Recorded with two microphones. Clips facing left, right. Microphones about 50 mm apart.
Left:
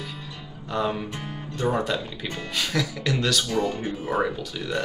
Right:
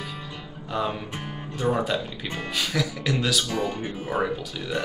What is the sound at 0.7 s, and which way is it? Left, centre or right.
Speech, centre.